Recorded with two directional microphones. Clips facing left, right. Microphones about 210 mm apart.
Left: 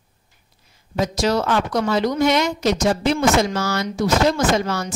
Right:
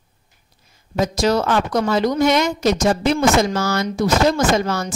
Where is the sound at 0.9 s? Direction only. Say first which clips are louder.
Right 2 dB; 45° right (ahead or behind).